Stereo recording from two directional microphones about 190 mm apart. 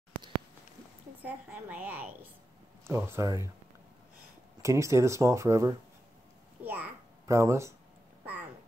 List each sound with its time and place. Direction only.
1.2 s speech: 10° right (ahead or behind)
4.6 s speech: 15° right (ahead or behind)
6.6 s babbling: 10° right (ahead or behind)